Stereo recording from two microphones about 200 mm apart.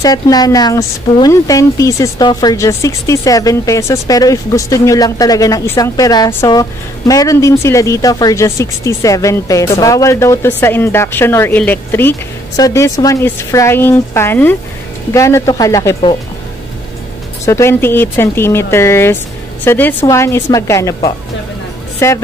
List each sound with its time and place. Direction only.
0.0 s a woman's voice: 20° left (ahead or behind)
17.5 s a woman's voice: 15° left (ahead or behind)